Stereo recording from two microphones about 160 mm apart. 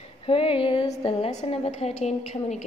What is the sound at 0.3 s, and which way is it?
A woman's voice, 35° left (ahead or behind).